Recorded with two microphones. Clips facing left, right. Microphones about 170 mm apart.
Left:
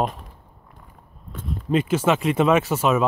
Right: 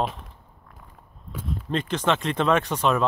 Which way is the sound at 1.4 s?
10° left (ahead or behind).